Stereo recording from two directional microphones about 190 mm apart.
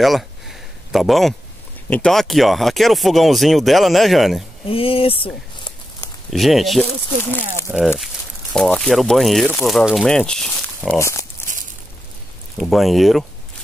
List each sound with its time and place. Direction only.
0.0 s a sound: centre (ahead or behind)
1.9 s speech: 5° left (ahead or behind)
4.6 s speech: 30° left (ahead or behind)
6.3 s speech: centre (ahead or behind)
8.5 s speech: 5° left (ahead or behind)
11.0 s speech: 15° left (ahead or behind)
12.5 s speech: centre (ahead or behind)